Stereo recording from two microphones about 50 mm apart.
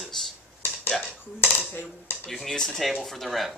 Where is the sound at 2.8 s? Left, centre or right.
Centre.